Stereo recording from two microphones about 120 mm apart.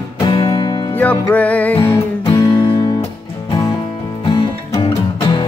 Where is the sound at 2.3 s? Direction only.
40° left (ahead or behind).